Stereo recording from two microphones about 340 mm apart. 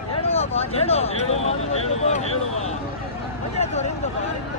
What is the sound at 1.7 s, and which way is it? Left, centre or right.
Speech, centre.